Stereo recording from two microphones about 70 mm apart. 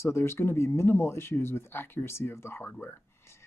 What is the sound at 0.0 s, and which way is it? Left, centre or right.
Speech, left.